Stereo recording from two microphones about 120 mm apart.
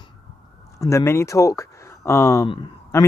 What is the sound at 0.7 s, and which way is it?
Speech, 25° left (ahead or behind).